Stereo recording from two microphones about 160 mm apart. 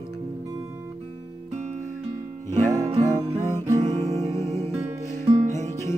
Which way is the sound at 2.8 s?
40° right (ahead or behind).